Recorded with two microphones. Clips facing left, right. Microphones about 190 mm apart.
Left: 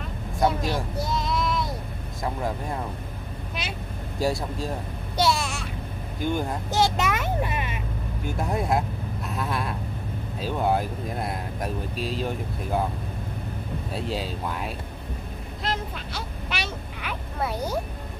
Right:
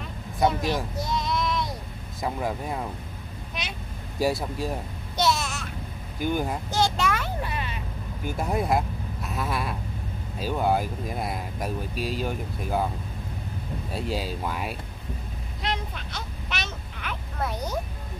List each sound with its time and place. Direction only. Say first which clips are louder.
0.4 s speech: even; centre (ahead or behind)
1.0 s a sound: left 1 dB; 5° left (ahead or behind)
2.2 s speech: even; 5° right (ahead or behind)
4.2 s speech: right 1 dB; 5° right (ahead or behind)
5.1 s a sound: left 1 dB; 5° left (ahead or behind)
6.2 s speech: even; 5° right (ahead or behind)
6.7 s vehicle: left 2 dB; 20° left (ahead or behind)
8.4 s speech: even; centre (ahead or behind)
13.9 s speech: right 1 dB; centre (ahead or behind)
15.6 s vehicle: left 1 dB; 5° left (ahead or behind)